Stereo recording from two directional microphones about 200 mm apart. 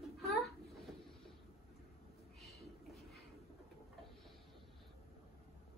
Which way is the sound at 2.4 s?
Centre (ahead or behind).